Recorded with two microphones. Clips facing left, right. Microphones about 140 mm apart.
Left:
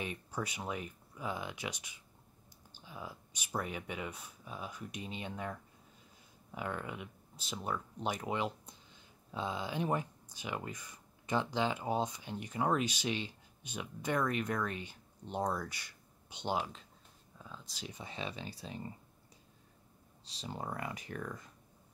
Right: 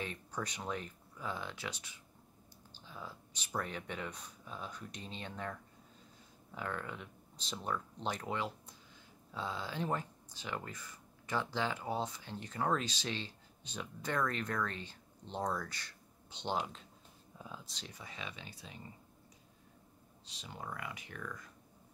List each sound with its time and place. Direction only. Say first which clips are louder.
0.0 s speech: left 2 dB; 10° left (ahead or behind)
17.4 s speech: right 2 dB; 10° right (ahead or behind)
17.6 s speech: left 4 dB; 5° left (ahead or behind)
17.9 s speech: left 6 dB; 30° left (ahead or behind)
20.2 s speech: left 5 dB; 35° left (ahead or behind)